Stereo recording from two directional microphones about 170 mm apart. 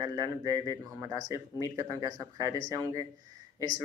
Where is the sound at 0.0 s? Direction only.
25° right (ahead or behind).